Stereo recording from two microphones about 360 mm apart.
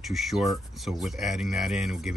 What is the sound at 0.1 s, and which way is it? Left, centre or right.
Speech, centre.